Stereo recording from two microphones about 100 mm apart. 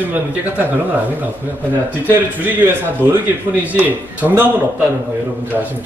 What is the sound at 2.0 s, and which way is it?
A man's voice, 20° right (ahead or behind).